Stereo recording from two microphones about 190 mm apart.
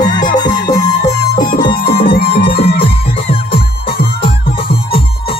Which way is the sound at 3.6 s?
55° left (ahead or behind).